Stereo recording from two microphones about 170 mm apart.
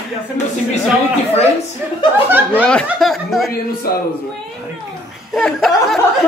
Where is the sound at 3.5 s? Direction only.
60° left (ahead or behind).